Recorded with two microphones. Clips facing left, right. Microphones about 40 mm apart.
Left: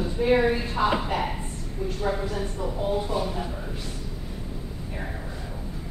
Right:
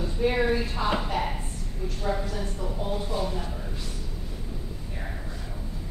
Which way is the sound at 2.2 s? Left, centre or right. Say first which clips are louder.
Left 3 dB; left.